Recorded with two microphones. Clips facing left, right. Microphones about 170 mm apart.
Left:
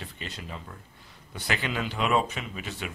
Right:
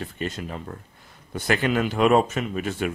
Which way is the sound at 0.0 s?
50° right (ahead or behind).